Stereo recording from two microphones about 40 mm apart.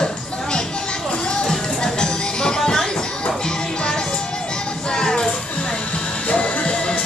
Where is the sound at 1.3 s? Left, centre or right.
Centre.